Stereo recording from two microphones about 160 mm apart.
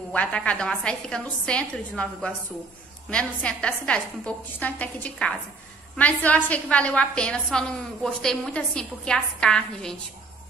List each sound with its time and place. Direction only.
0.1 s a woman's voice: 10° left (ahead or behind)